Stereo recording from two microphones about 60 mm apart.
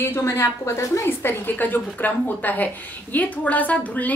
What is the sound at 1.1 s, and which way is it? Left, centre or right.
A woman's voice, left.